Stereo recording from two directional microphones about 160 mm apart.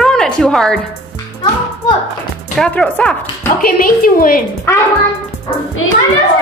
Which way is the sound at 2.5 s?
5° left (ahead or behind).